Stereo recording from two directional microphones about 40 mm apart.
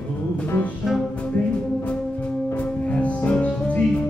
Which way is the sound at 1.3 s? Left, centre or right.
Left.